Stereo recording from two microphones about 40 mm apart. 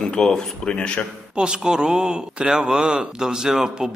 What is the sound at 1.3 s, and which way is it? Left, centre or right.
Speech, centre.